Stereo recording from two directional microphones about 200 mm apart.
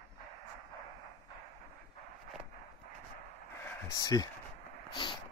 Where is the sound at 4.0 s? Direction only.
20° left (ahead or behind).